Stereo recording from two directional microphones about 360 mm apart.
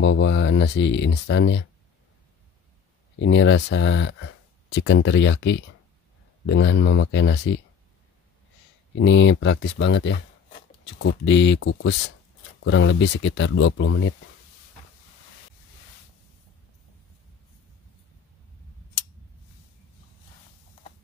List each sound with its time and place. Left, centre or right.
0.0 s speech: left
3.2 s speech: left
8.9 s speech: left